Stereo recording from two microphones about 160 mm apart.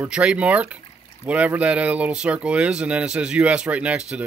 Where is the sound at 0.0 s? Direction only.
5° right (ahead or behind).